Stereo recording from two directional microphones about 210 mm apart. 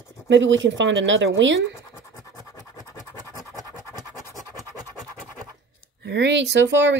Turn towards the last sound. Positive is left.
turn(degrees=-60)  # may be behind; listen again after turning